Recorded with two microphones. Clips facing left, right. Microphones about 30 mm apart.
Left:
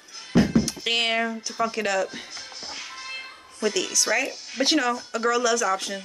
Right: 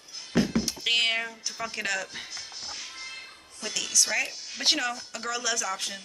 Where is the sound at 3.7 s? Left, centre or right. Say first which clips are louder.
Left 1 dB; centre.